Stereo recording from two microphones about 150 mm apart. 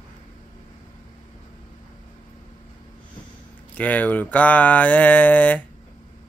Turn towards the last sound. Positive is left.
turn(degrees=10)  # may be behind; listen again after turning